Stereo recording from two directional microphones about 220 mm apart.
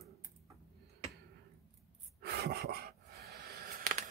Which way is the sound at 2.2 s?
45° right (ahead or behind).